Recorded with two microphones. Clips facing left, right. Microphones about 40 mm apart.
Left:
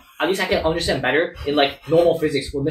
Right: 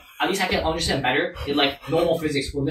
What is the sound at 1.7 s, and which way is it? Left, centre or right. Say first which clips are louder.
Speech: left 5 dB; right.